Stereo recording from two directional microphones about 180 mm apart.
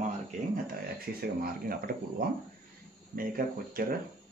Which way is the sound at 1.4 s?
55° right (ahead or behind).